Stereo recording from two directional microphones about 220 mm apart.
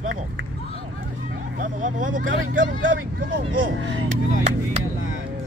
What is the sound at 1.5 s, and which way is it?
Speech, 35° right (ahead or behind).